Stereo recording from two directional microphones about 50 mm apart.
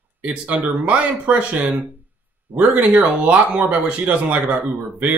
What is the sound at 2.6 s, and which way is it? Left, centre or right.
Speech, right.